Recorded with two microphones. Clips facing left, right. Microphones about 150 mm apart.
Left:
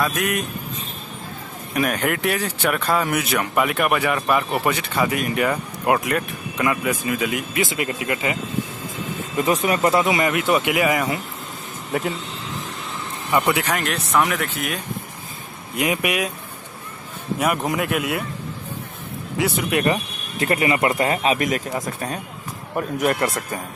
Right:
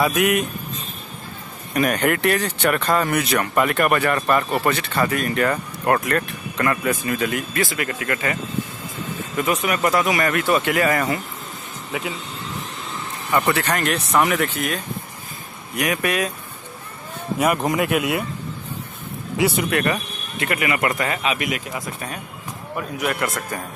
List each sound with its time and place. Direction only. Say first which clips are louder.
0.0 s speech: right 4 dB; 5° right (ahead or behind)
1.7 s speech: right 2 dB; centre (ahead or behind); by 8.4 s 15° left (ahead or behind)
9.4 s speech: left 2 dB; 30° left (ahead or behind); by 11.1 s 10° left (ahead or behind)
13.3 s speech: even; 15° left (ahead or behind)
13.7 s speech: right 1 dB; centre (ahead or behind)
15.7 s speech: even; 20° left (ahead or behind)
17.4 s speech: right 2 dB; centre (ahead or behind)
19.3 s speech: right 2 dB; 5° right (ahead or behind)
19.7 s speech: left 1 dB; 20° left (ahead or behind)
20.3 s a man's voice: left 3 dB; 30° left (ahead or behind)